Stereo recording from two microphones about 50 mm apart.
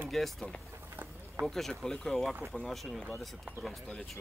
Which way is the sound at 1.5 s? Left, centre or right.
Centre.